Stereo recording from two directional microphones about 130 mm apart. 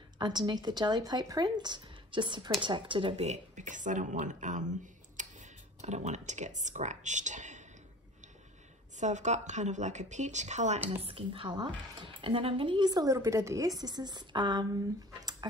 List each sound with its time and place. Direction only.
0.2 s a woman's voice: 35° right (ahead or behind)
3.3 s speech: 70° right (ahead or behind)
5.8 s speech: 60° right (ahead or behind)
9.0 s speech: 65° right (ahead or behind)
11.0 s a woman's voice: 45° right (ahead or behind)